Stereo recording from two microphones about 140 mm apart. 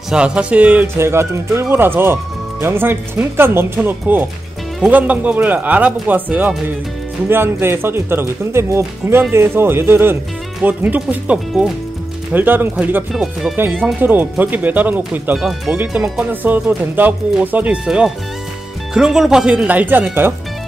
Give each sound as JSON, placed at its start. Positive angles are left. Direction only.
{"t": 0.1, "sound": "speech", "side_deg": -5}
{"t": 13.1, "sound": "speech", "side_deg": 0}